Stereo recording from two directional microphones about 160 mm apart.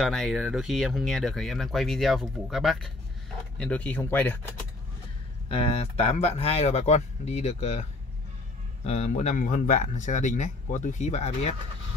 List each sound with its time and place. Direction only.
0.0 s speech: centre (ahead or behind)
5.5 s speech: 35° left (ahead or behind)
8.8 s speech: 45° left (ahead or behind)